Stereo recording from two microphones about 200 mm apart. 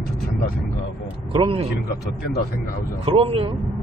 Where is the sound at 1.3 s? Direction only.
25° right (ahead or behind).